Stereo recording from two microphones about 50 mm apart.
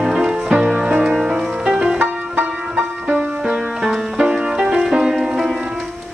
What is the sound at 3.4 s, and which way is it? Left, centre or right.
Music, centre.